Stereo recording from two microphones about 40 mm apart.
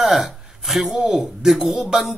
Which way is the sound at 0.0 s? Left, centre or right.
Centre.